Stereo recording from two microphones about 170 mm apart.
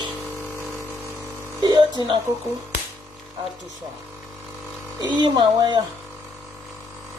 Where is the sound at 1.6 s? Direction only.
25° right (ahead or behind).